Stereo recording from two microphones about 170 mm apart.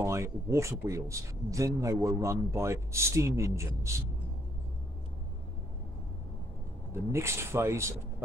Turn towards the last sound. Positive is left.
turn(degrees=-15)  # may be behind; listen again after turning